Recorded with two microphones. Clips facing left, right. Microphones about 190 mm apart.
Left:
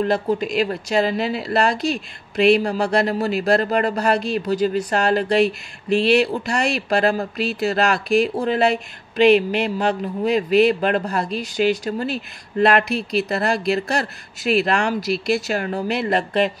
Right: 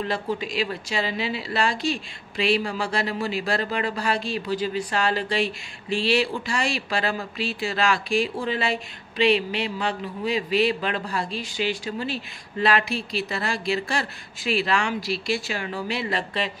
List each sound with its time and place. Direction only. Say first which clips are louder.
0.0 s speech: left 7 dB; 45° left (ahead or behind)
2.6 s speech: left 7 dB; 40° left (ahead or behind)